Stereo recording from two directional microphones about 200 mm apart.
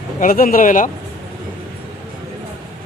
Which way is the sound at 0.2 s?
45° left (ahead or behind).